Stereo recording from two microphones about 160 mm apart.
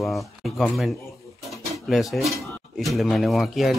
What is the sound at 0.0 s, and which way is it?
Speech, centre (ahead or behind).